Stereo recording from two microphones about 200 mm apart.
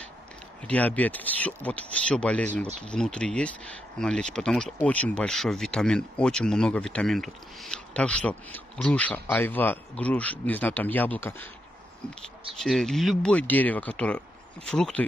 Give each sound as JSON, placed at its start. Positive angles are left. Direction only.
{"t": 0.7, "sound": "speech", "side_deg": 10}
{"t": 12.5, "sound": "speech", "side_deg": 0}